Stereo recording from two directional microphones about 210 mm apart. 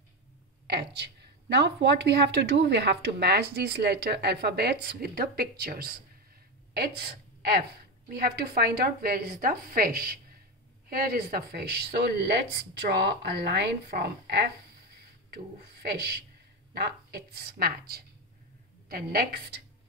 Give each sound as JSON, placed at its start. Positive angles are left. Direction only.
{"t": 0.7, "sound": "speech", "side_deg": -50}
{"t": 8.1, "sound": "speech", "side_deg": -45}